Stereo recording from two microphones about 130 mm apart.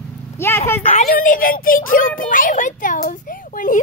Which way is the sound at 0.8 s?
50° left (ahead or behind).